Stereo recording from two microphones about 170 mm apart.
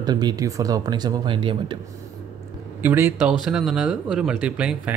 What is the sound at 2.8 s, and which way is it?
Speech, 15° right (ahead or behind).